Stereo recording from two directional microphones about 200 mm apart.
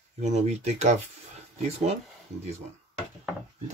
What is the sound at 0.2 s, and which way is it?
Speech, 35° right (ahead or behind).